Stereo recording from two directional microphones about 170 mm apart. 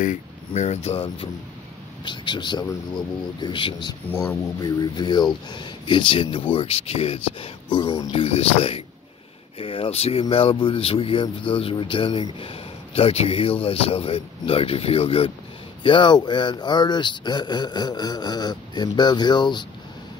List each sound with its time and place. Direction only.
0.5 s speech: 40° left (ahead or behind)
4.2 s speech: 20° left (ahead or behind)
7.8 s speech: 20° left (ahead or behind)
8.1 s speech: 35° left (ahead or behind)